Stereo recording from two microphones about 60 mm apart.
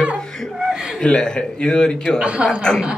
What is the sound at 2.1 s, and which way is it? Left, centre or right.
Speech, centre.